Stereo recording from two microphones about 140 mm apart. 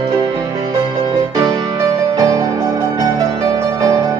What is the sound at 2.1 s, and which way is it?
Music, 25° right (ahead or behind).